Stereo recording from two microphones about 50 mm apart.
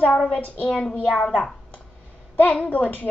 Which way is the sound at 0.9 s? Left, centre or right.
Left.